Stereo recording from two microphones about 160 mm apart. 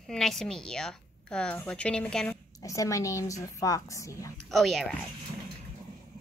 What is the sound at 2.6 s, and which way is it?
Speech, 20° left (ahead or behind).